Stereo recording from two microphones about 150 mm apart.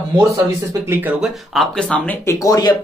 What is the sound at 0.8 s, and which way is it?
Speech, 15° right (ahead or behind).